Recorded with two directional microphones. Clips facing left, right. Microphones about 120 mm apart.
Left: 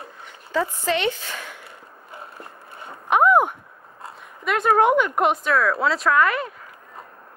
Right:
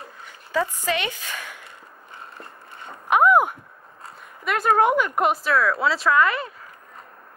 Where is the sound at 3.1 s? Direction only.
10° right (ahead or behind).